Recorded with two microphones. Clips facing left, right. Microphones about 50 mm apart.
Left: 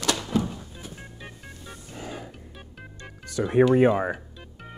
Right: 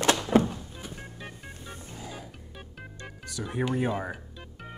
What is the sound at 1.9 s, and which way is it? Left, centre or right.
Music, left.